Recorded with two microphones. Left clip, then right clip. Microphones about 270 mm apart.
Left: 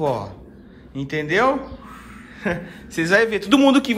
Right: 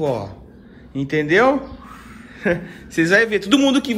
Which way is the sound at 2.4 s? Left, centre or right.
Centre.